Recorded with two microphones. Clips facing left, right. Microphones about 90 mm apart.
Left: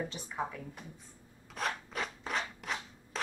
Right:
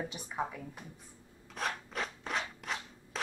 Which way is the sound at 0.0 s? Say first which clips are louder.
Even; 10° right (ahead or behind).